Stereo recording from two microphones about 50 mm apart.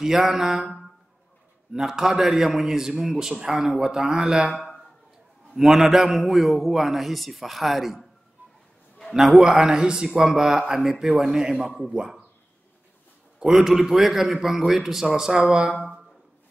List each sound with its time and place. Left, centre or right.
0.0 s a man's voice: centre
5.5 s a man's voice: centre
9.1 s a man's voice: centre
13.7 s a man's voice: centre